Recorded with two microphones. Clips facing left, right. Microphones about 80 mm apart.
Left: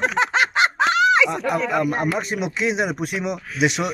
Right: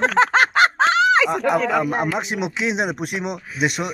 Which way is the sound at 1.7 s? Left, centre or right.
Right.